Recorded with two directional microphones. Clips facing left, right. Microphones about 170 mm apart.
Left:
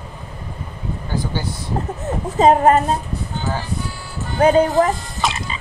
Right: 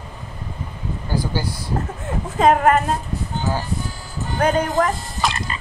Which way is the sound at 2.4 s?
25° left (ahead or behind).